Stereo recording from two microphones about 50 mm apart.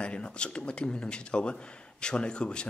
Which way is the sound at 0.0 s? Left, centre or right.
Left.